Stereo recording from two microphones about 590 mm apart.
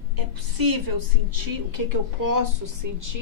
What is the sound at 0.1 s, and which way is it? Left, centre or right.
A woman's voice, right.